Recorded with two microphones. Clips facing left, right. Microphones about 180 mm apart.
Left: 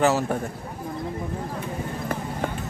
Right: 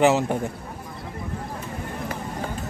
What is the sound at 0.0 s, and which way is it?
Speech, 20° right (ahead or behind).